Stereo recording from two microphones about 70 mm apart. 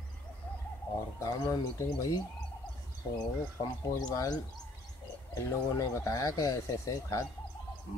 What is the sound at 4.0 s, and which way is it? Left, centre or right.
Speech, left.